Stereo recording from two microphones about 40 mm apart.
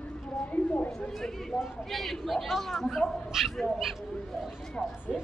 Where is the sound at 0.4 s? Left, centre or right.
Left.